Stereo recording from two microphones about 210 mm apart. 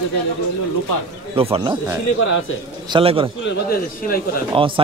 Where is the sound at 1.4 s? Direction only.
25° right (ahead or behind).